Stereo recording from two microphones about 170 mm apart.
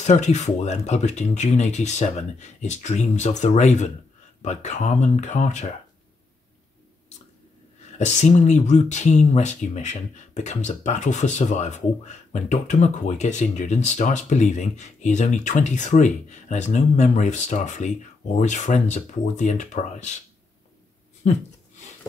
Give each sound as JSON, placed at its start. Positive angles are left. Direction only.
{"t": 0.0, "sound": "speech", "side_deg": 45}
{"t": 8.0, "sound": "speech", "side_deg": 40}